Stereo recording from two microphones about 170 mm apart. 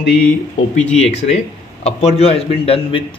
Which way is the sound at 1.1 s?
40° left (ahead or behind).